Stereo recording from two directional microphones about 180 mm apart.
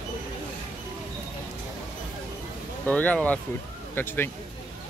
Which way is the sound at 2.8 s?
10° left (ahead or behind).